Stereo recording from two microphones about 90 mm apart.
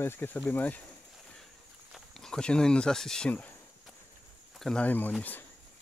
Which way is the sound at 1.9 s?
5° left (ahead or behind).